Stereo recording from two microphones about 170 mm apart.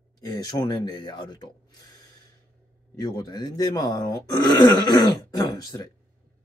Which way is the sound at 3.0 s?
25° left (ahead or behind).